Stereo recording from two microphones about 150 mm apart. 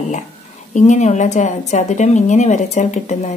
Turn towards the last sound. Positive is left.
turn(degrees=50)  # may be behind; listen again after turning